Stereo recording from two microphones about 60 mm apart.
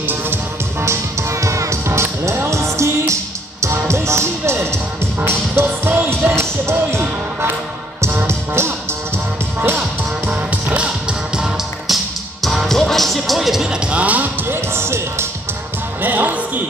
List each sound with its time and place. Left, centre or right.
0.0 s music: right
1.3 s music: right
8.3 s music: right
10.3 s music: right
11.9 s music: centre; by 14.3 s right
14.5 s music: right
16.0 s music: right